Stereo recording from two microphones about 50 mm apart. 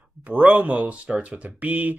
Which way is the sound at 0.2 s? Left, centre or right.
Right.